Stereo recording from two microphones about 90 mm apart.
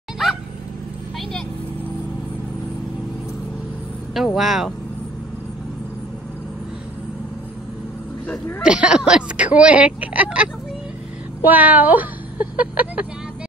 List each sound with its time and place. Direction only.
0.2 s a sound: 5° right (ahead or behind)
4.4 s speech: 5° right (ahead or behind)
8.6 s speech: 10° right (ahead or behind)